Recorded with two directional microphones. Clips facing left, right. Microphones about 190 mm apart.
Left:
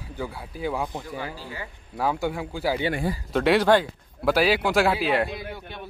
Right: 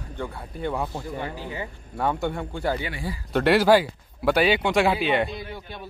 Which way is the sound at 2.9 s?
55° left (ahead or behind).